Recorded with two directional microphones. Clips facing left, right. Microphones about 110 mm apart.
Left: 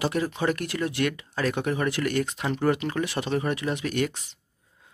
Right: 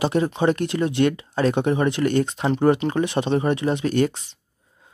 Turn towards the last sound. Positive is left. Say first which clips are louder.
# right 6 dB
turn(degrees=-30)  # may be behind; listen again after turning